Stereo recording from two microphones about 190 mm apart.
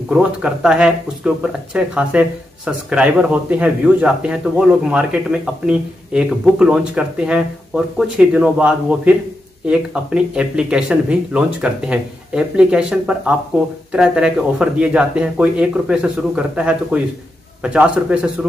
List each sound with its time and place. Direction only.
0.1 s speech: 5° right (ahead or behind)